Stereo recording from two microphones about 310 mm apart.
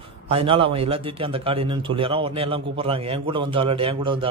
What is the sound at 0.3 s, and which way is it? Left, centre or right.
A man's voice, centre.